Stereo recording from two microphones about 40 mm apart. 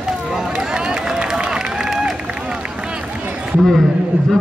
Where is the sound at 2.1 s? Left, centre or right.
Right.